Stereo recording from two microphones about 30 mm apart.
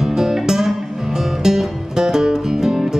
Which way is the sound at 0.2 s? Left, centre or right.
Centre.